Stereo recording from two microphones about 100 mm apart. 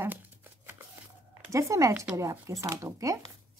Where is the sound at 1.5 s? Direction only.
30° right (ahead or behind).